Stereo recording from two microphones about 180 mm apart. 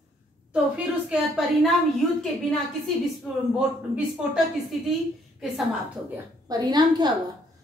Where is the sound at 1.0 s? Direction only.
5° right (ahead or behind).